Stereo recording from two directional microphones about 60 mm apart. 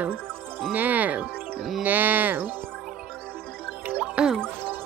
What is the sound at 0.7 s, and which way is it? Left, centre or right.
Speech, right.